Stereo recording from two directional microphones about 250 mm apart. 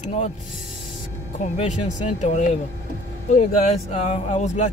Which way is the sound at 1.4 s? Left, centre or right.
Left.